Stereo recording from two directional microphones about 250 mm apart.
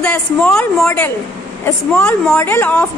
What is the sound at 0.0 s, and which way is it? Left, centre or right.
A woman's voice, centre.